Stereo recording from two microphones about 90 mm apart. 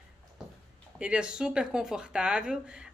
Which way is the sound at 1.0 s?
10° right (ahead or behind).